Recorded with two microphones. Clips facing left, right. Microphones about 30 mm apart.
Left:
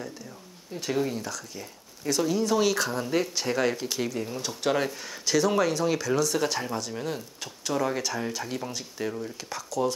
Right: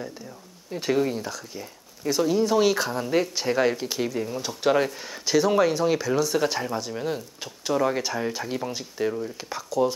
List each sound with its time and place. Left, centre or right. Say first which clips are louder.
0.7 s speech: right 5 dB; centre
0.9 s speech: right 2 dB; centre